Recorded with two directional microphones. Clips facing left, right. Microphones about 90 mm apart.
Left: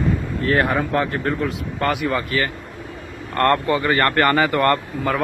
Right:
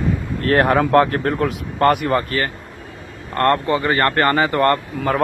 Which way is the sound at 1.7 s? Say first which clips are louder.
Right 6 dB; 50° right (ahead or behind).